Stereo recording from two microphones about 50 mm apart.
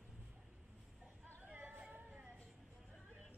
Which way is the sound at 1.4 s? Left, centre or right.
Right.